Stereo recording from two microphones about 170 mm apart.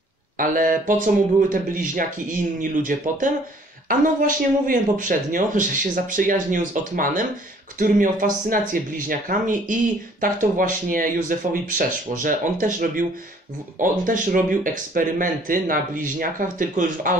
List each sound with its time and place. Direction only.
0.4 s speech: 55° right (ahead or behind)